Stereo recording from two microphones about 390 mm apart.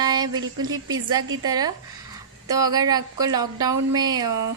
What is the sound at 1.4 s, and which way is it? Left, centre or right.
Speech, centre.